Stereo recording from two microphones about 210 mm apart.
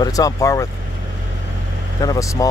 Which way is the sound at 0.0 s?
15° left (ahead or behind).